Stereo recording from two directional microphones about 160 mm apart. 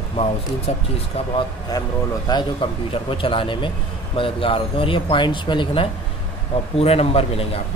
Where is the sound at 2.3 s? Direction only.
25° left (ahead or behind).